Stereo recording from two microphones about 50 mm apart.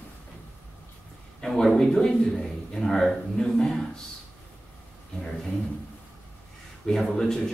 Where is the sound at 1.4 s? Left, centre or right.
Centre.